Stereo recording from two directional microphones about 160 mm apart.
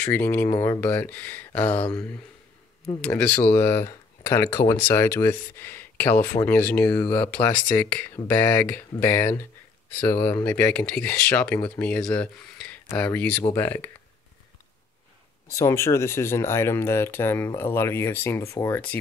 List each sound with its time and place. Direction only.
0.0 s speech: 10° left (ahead or behind)
3.0 s speech: 5° left (ahead or behind)
15.5 s speech: 20° left (ahead or behind)